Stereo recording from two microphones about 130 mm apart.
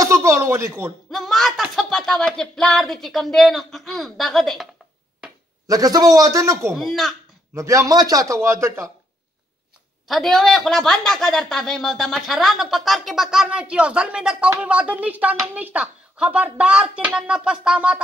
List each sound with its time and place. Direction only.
0.0 s speech: 20° right (ahead or behind)
1.1 s a woman's voice: centre (ahead or behind)
5.7 s a man's voice: 30° right (ahead or behind)
6.7 s a woman's voice: centre (ahead or behind)
7.5 s a man's voice: 25° right (ahead or behind)
10.0 s a woman's voice: centre (ahead or behind)